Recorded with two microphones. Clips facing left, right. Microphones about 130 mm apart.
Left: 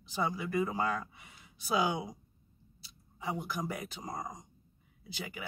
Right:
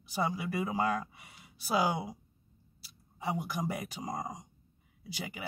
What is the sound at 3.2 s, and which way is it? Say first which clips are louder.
Speech: right 2 dB; 15° right (ahead or behind).